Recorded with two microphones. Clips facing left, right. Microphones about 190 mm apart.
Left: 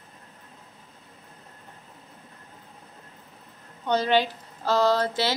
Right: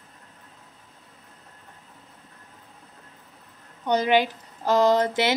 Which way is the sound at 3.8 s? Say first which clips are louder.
Right 2 dB; 15° right (ahead or behind).